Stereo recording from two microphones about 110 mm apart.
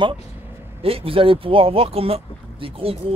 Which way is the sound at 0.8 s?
60° right (ahead or behind).